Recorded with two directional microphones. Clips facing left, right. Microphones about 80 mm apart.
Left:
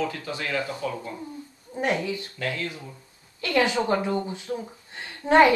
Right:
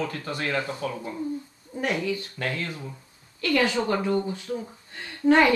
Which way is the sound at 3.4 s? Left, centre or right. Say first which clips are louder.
Even; centre.